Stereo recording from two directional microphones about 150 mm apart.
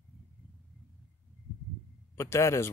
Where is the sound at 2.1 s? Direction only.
20° left (ahead or behind).